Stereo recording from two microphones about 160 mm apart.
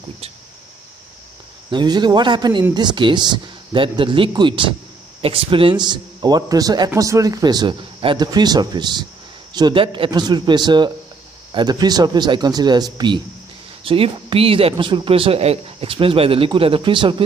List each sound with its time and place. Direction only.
1.7 s speech: 25° right (ahead or behind)